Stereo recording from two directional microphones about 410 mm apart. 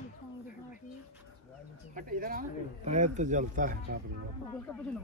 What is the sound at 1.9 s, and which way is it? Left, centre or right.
Speech, centre.